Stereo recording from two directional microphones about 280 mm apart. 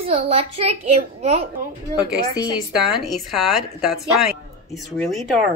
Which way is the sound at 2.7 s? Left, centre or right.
Centre.